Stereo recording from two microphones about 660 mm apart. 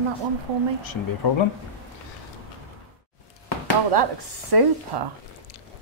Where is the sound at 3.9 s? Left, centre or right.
Right.